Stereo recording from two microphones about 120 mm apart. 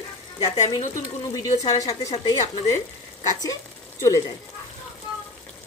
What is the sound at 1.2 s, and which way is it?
Speech, 35° left (ahead or behind).